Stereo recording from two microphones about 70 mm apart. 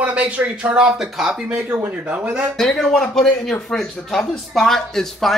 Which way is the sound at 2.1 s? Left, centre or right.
Centre.